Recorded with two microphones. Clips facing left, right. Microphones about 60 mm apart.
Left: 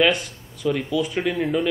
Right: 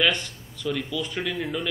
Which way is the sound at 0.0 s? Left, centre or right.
Centre.